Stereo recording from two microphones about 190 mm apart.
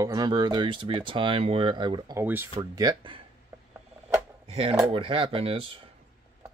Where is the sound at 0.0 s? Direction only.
20° right (ahead or behind).